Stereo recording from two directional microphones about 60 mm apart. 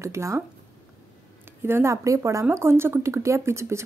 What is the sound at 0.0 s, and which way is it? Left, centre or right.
Speech, right.